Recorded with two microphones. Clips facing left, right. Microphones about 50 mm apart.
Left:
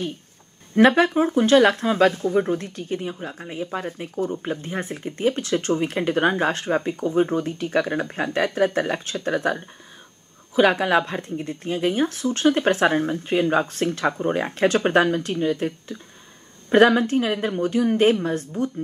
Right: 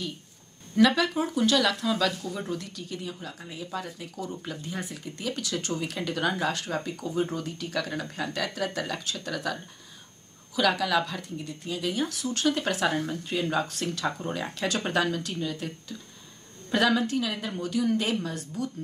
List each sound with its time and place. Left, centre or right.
0.7 s speech: left